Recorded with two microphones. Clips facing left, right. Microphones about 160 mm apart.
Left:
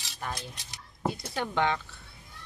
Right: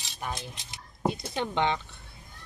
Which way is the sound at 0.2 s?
20° right (ahead or behind).